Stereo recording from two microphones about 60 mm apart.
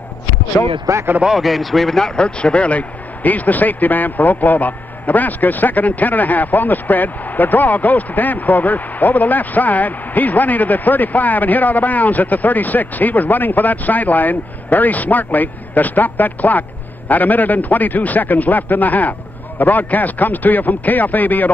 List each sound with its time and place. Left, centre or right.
0.9 s speech: right
1.2 s a man's voice: centre
2.0 s a man's voice: centre